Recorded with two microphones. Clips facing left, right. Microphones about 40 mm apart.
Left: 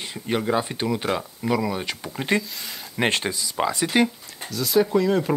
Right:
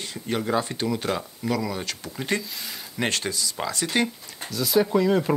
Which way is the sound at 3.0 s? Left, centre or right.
Left.